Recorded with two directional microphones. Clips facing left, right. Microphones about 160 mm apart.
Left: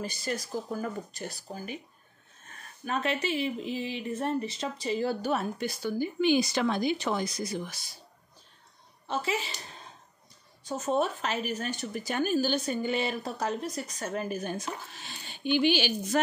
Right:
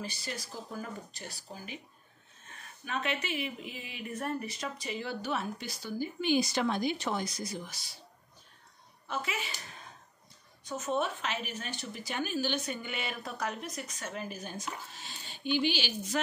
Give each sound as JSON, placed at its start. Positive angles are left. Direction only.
{"t": 0.0, "sound": "speech", "side_deg": 45}
{"t": 2.8, "sound": "speech", "side_deg": 40}
{"t": 9.0, "sound": "a woman's voice", "side_deg": 30}
{"t": 15.0, "sound": "speech", "side_deg": 65}